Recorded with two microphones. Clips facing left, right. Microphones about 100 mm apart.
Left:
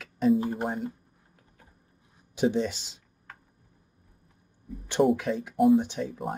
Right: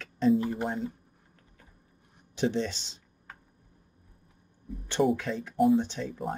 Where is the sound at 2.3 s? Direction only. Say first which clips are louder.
Left 3 dB; 10° left (ahead or behind).